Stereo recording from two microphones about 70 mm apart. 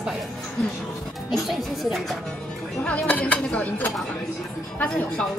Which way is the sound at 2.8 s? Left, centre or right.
Centre.